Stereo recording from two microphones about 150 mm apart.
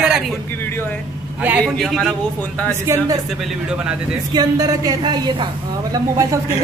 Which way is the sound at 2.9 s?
20° right (ahead or behind).